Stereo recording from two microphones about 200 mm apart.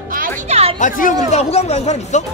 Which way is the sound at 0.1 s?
45° right (ahead or behind).